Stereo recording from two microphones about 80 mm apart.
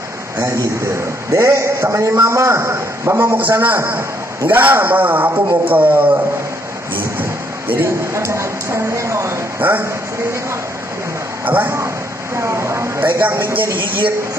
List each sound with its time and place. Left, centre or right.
0.9 s a man's voice: right
7.2 s basketball bounce: right
8.1 s speech: right
9.6 s a sound: right
11.4 s speech: right
12.4 s a sound: right
13.0 s a man's voice: right